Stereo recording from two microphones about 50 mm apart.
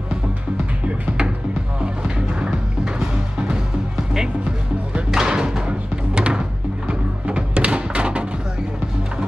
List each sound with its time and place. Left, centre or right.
0.8 s music: centre
5.1 s music: centre